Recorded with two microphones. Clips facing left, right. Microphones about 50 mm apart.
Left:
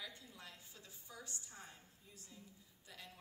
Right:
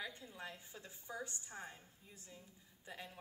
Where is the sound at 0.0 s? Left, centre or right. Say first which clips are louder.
Right 5 dB; right.